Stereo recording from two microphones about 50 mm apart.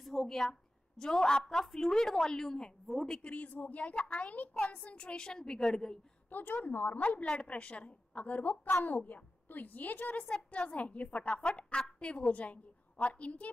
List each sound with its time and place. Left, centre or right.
0.0 s a woman's voice: centre
3.1 s a woman's voice: left
6.3 s a woman's voice: left